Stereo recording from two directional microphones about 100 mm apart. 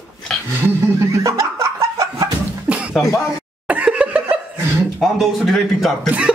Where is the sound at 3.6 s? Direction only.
15° right (ahead or behind).